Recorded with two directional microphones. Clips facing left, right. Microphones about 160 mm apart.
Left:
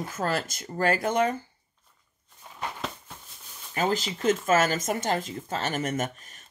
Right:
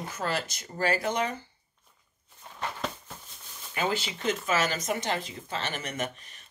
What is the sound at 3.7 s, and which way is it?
Speech, 40° left (ahead or behind).